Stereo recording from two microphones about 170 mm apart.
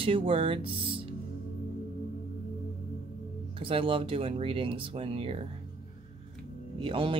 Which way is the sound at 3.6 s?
30° right (ahead or behind).